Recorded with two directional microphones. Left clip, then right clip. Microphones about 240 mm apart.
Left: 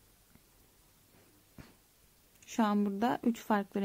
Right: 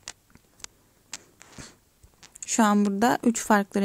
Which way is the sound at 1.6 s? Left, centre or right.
Centre.